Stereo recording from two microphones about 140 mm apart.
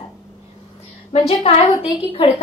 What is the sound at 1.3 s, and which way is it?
Speech, 45° left (ahead or behind).